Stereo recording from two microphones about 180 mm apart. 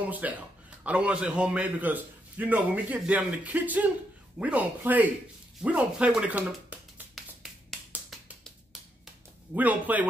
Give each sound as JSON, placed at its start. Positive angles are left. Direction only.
{"t": 0.1, "sound": "a man's voice", "side_deg": -10}
{"t": 7.4, "sound": "finger snapping", "side_deg": 0}
{"t": 9.0, "sound": "a sound", "side_deg": -10}